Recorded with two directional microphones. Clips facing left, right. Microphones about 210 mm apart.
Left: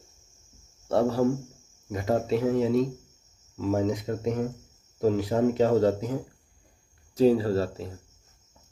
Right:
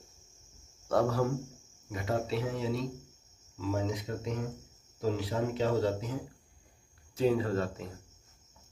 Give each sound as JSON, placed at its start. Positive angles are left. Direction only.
{"t": 0.8, "sound": "speech", "side_deg": 30}
{"t": 1.9, "sound": "speech", "side_deg": 45}
{"t": 7.2, "sound": "speech", "side_deg": 35}